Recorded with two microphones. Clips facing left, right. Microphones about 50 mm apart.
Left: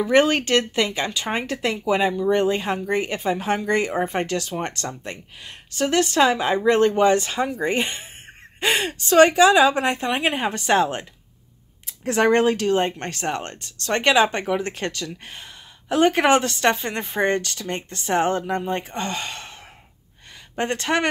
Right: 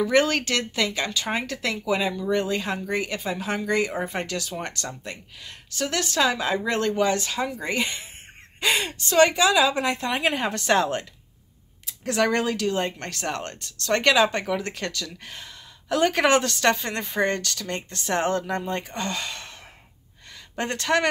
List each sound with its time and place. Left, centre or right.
0.0 s speech: left
12.0 s speech: left
20.5 s speech: left